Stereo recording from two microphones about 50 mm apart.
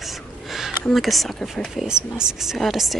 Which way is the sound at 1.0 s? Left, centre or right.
Centre.